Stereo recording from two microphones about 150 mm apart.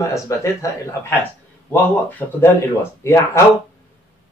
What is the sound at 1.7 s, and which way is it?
Speech, 15° left (ahead or behind).